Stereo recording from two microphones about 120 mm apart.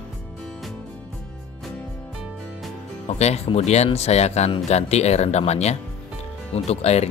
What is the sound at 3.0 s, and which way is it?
Speech, 65° left (ahead or behind).